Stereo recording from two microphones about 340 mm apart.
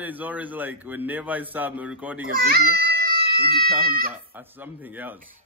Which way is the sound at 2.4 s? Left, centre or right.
Right.